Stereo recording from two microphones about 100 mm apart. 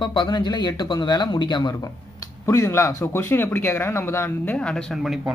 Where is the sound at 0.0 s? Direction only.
50° left (ahead or behind).